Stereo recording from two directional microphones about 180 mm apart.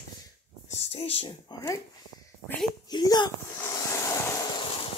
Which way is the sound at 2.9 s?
25° left (ahead or behind).